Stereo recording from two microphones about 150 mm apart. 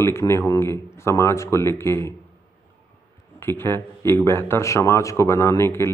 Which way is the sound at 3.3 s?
15° left (ahead or behind).